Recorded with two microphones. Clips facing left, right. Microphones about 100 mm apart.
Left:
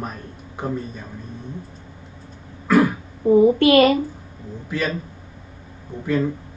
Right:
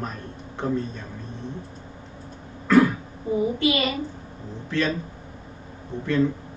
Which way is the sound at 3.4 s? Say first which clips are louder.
Left 9 dB; 60° left (ahead or behind).